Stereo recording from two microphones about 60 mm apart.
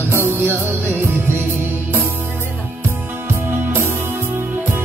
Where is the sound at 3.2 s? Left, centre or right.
Right.